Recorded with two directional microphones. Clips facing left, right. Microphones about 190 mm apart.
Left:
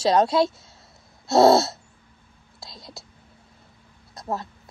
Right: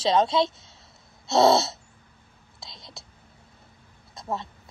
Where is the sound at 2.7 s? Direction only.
Centre (ahead or behind).